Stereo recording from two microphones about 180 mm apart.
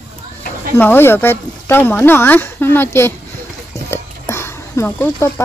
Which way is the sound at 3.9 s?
15° left (ahead or behind).